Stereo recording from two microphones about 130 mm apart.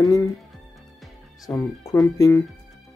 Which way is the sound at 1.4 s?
20° left (ahead or behind).